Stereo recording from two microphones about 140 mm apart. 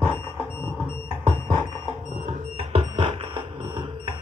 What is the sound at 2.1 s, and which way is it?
Music, 55° right (ahead or behind).